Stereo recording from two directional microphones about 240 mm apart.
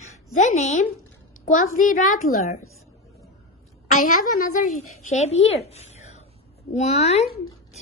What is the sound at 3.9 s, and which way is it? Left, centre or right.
Speech, left.